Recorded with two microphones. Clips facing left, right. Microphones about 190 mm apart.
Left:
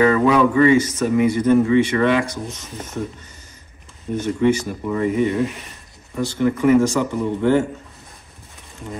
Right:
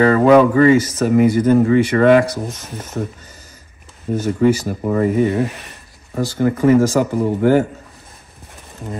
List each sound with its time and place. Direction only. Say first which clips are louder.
0.0 s speech: right 4 dB; 45° right (ahead or behind)
4.2 s speech: right 2 dB; 35° right (ahead or behind)